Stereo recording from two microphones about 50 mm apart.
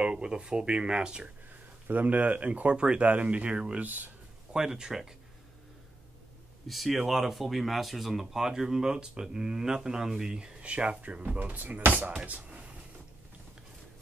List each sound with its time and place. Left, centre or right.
0.0 s speech: centre
1.9 s speech: right
3.8 s speech: right
4.5 s speech: centre
6.7 s speech: centre; by 11.3 s right
11.3 s speech: right